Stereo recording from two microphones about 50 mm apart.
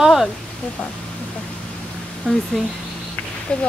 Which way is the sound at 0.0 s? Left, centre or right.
Centre.